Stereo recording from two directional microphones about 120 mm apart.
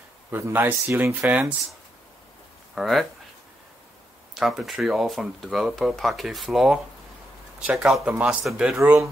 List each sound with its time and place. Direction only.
0.3 s speech: 15° right (ahead or behind)
2.7 s speech: centre (ahead or behind)
4.3 s speech: centre (ahead or behind)
8.7 s speech: 20° right (ahead or behind)